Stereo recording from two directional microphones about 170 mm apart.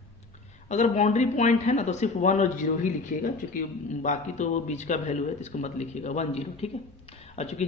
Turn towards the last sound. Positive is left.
turn(degrees=40)  # may be behind; listen again after turning